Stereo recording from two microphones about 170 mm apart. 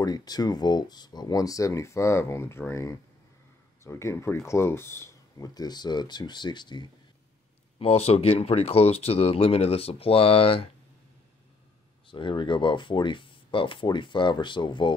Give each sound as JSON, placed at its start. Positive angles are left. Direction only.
{"t": 0.0, "sound": "speech", "side_deg": 25}
{"t": 12.1, "sound": "speech", "side_deg": 30}